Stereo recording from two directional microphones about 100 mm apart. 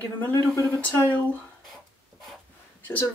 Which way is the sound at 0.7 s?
15° left (ahead or behind).